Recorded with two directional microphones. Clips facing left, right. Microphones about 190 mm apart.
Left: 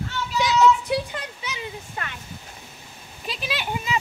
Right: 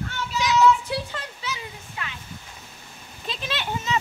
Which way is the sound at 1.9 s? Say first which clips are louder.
Left 2 dB; 50° left (ahead or behind).